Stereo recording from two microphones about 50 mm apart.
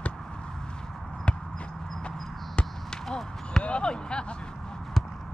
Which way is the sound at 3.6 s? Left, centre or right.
Left.